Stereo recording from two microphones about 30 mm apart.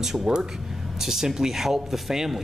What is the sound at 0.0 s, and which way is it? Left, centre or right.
A man's voice, centre.